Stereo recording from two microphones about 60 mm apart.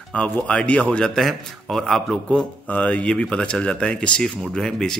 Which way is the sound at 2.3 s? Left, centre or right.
Left.